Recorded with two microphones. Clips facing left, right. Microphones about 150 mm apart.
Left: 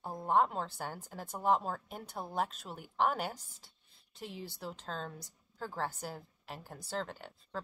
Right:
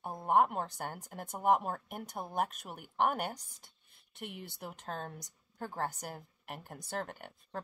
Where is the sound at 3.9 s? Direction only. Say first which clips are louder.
Even; 65° right (ahead or behind).